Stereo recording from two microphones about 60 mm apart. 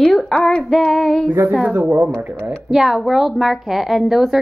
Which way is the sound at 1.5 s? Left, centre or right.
Right.